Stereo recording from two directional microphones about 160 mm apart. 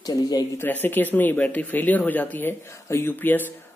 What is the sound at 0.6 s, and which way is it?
Speech, 10° left (ahead or behind).